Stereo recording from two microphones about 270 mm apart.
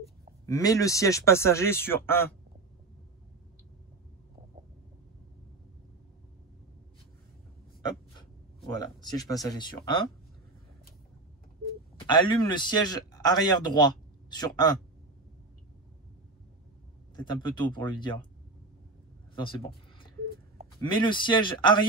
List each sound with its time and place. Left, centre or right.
0.5 s speech: centre
8.7 s speech: centre
12.0 s speech: centre
17.1 s speech: centre
20.9 s speech: centre